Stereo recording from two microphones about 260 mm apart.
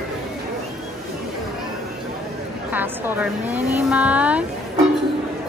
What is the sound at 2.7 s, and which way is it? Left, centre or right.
Speech, centre.